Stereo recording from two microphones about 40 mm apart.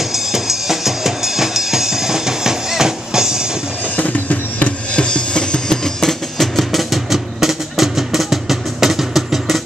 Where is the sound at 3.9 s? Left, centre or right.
Left.